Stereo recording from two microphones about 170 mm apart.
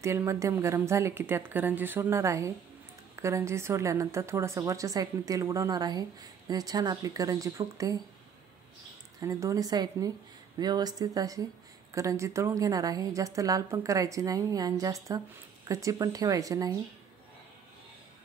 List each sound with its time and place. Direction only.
0.0 s a woman's voice: 15° right (ahead or behind)
9.2 s a woman's voice: 20° right (ahead or behind)